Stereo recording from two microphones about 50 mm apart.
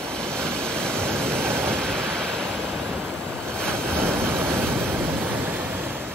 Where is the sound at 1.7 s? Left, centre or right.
Centre.